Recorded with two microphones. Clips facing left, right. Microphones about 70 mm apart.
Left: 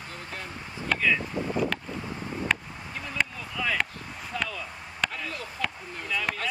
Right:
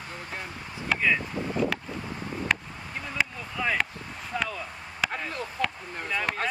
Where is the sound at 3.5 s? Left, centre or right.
Right.